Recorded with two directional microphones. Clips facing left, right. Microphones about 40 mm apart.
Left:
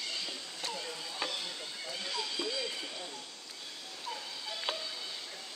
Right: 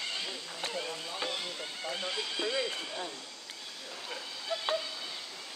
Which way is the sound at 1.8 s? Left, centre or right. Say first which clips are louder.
Right 3 dB; right.